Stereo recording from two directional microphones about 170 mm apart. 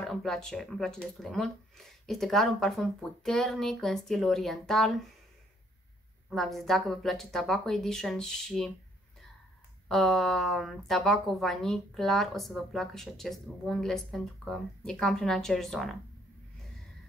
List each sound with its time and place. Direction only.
0.0 s speech: 5° left (ahead or behind)
6.3 s speech: centre (ahead or behind)
9.8 s speech: centre (ahead or behind)